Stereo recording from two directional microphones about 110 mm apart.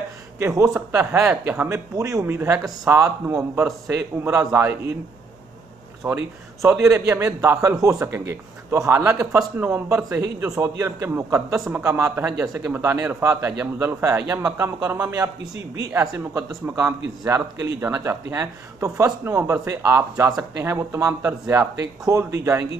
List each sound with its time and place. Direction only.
0.6 s speech: 20° right (ahead or behind)
6.0 s a man's voice: 20° right (ahead or behind)
9.0 s a man's voice: 10° right (ahead or behind)
9.6 s a man's voice: 25° right (ahead or behind)